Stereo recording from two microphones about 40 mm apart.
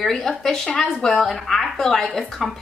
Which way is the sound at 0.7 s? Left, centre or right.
Left.